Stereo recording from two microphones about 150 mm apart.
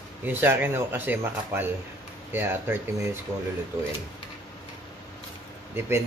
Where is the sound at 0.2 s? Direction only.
15° right (ahead or behind).